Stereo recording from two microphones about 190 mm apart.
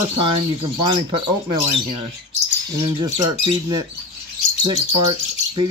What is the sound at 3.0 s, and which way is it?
Bird, 20° right (ahead or behind).